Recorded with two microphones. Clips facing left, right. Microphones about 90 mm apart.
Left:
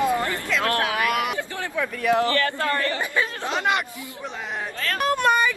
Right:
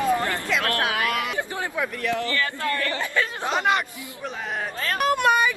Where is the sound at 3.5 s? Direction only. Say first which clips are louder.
Right 2 dB; centre (ahead or behind).